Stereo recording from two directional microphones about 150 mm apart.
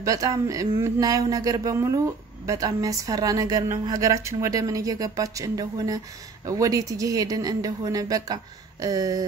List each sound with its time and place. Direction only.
0.0 s speech: 20° right (ahead or behind)